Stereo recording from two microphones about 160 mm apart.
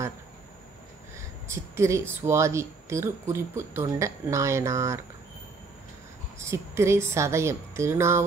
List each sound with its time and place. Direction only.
1.1 s a sound: 15° right (ahead or behind)
2.2 s speech: 15° right (ahead or behind)
6.3 s a woman's voice: 15° right (ahead or behind)